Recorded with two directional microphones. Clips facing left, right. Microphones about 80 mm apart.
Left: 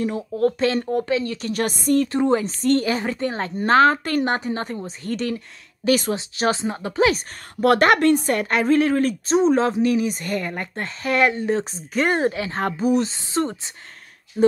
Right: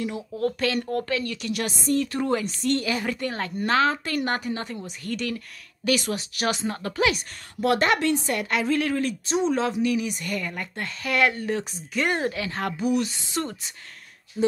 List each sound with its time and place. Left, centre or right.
0.0 s speech: left
2.1 s speech: left
4.2 s a woman's voice: left
7.6 s speech: left